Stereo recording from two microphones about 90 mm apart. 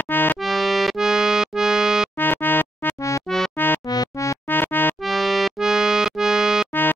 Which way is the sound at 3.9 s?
40° left (ahead or behind).